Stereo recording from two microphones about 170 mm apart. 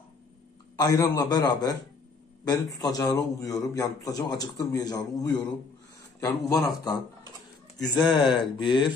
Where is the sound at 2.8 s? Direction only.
20° left (ahead or behind).